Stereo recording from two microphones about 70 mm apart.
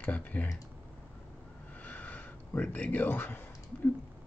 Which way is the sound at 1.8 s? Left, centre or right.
Left.